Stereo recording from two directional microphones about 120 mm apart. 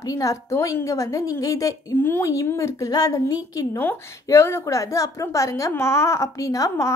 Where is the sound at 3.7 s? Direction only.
20° left (ahead or behind).